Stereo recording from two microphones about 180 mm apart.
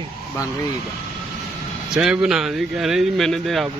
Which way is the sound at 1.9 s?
5° right (ahead or behind).